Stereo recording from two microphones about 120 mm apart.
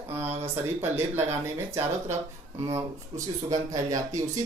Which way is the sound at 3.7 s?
30° right (ahead or behind).